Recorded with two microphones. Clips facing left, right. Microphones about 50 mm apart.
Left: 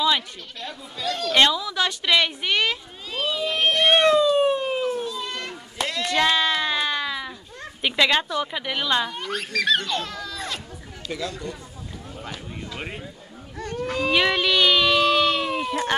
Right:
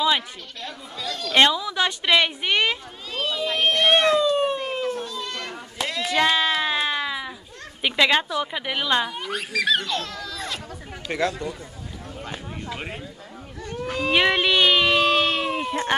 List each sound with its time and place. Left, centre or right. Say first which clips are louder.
0.6 s speech: left 1 dB; centre
1.3 s a woman's voice: right 2 dB; centre
3.1 s cat: even; centre
5.5 s a sound: even; centre
7.8 s speech: right 1 dB; centre
11.1 s speech: right 6 dB; right
12.7 s speech: left 1 dB; centre
14.1 s a sound: right 2 dB; centre